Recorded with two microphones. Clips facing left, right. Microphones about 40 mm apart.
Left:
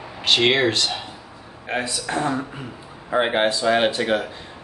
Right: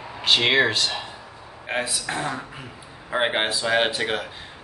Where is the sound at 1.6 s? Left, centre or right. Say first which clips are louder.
Left 1 dB; centre.